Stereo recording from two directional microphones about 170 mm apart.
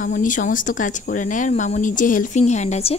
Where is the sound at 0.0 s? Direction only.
50° left (ahead or behind).